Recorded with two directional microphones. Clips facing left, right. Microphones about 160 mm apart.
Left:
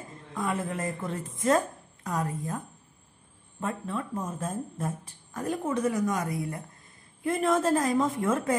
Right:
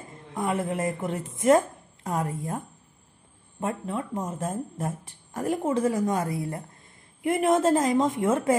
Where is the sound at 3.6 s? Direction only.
20° right (ahead or behind).